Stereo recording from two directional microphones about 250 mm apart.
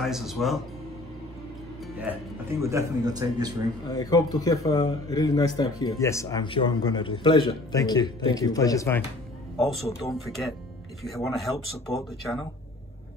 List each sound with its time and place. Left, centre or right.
0.0 s speech: centre
2.1 s a man's voice: centre
3.8 s speech: centre
9.6 s speech: centre